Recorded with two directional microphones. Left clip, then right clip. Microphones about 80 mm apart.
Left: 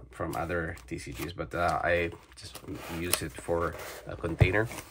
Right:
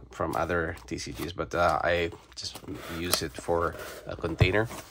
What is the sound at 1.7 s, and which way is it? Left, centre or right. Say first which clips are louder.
Speech: right 1 dB; centre.